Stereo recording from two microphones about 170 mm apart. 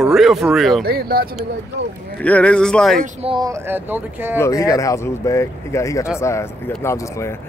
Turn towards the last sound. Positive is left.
turn(degrees=15)  # may be behind; listen again after turning